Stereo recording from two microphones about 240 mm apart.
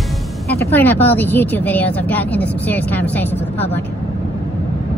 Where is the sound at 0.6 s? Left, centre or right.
Centre.